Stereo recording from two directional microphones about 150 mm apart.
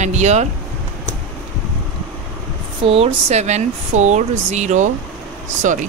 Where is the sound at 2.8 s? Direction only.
40° right (ahead or behind).